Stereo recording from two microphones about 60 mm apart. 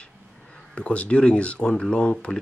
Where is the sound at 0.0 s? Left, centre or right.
Centre.